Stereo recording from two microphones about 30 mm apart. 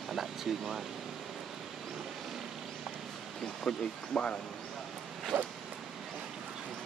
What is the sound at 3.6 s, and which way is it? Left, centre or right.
Speech, centre.